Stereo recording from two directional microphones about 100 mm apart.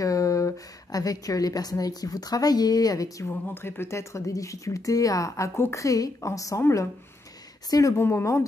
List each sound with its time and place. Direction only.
0.0 s speech: 35° left (ahead or behind)
3.4 s speech: 20° left (ahead or behind)
8.0 s speech: 25° left (ahead or behind)